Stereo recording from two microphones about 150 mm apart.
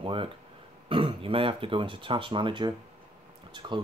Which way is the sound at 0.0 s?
35° right (ahead or behind).